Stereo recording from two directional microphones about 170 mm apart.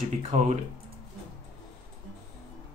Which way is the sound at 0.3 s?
45° right (ahead or behind).